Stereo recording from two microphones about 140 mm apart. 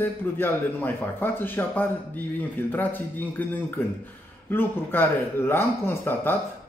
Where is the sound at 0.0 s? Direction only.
15° left (ahead or behind).